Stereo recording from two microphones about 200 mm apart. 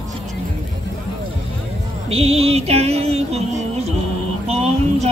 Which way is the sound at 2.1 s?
30° right (ahead or behind).